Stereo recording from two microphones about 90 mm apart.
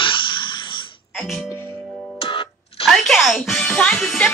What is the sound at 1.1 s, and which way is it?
Music, centre (ahead or behind).